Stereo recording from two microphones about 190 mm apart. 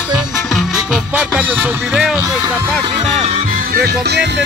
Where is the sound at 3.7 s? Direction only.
55° right (ahead or behind).